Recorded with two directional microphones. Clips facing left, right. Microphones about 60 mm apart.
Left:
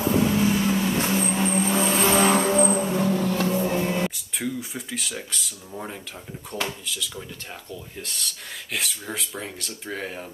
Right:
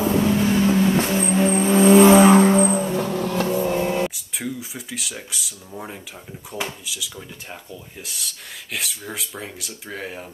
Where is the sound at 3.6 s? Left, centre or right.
Right.